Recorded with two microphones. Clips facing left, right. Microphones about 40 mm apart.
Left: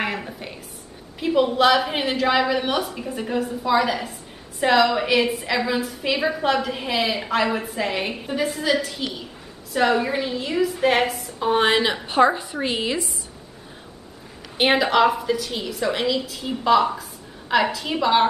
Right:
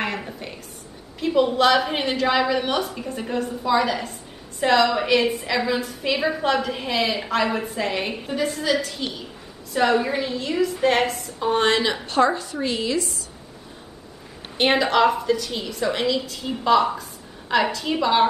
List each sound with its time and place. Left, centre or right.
0.0 s a sound: centre
1.2 s a woman's voice: centre; by 13.1 s left
14.6 s a woman's voice: centre